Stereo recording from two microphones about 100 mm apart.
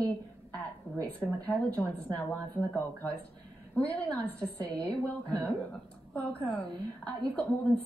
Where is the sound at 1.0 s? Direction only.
10° left (ahead or behind).